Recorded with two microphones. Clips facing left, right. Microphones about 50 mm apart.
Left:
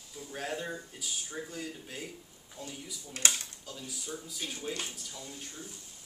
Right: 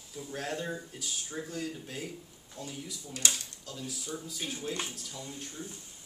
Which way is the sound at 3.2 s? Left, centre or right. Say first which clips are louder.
Left 1 dB; left.